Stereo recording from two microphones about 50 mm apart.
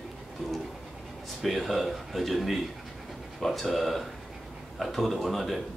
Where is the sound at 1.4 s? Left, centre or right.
Centre.